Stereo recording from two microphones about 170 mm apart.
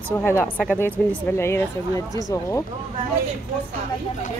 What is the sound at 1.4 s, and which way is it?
Speech, 15° left (ahead or behind).